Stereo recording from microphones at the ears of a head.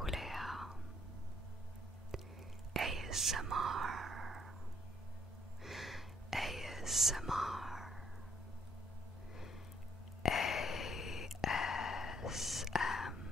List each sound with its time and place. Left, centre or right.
0.0 s whispering: centre
2.7 s whispering: right
5.7 s whispering: centre
10.2 s sigh: left
12.4 s whispering: centre